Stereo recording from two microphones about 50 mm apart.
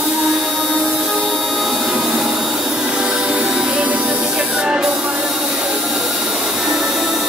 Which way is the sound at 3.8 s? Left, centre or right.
Right.